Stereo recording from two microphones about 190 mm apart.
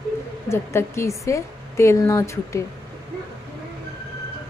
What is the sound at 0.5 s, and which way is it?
A woman's voice, 15° left (ahead or behind).